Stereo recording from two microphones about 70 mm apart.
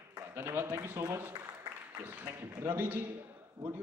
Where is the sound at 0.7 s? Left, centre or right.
Right.